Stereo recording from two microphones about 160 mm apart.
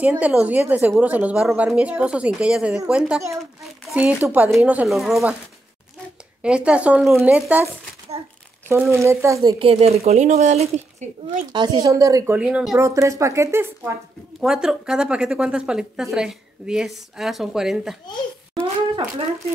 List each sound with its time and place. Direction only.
0.2 s a woman's voice: 10° right (ahead or behind)
6.4 s a woman's voice: 5° right (ahead or behind)
9.0 s a woman's voice: 20° right (ahead or behind)
9.7 s speech: 40° right (ahead or behind)
11.5 s a woman's voice: 25° right (ahead or behind)
12.4 s a woman's voice: 5° right (ahead or behind)
12.7 s a woman's voice: 20° right (ahead or behind)
14.4 s a woman's voice: 5° right (ahead or behind)
18.5 s a sound: 30° right (ahead or behind)